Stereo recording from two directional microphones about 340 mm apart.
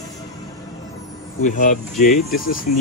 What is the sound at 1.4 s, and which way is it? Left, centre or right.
Speech, left.